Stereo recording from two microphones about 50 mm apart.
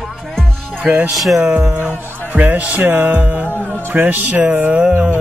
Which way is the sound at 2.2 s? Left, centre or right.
Right.